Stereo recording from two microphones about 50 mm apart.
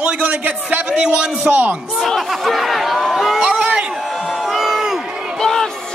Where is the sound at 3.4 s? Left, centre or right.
Right.